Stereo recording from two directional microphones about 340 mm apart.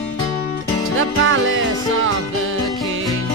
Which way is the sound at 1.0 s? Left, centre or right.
Right.